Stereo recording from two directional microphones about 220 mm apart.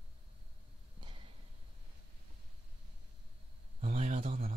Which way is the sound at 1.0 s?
25° right (ahead or behind).